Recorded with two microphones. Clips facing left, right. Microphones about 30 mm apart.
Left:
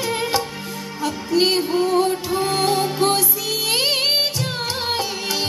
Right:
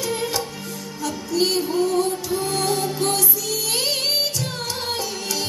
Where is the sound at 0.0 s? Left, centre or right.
Left.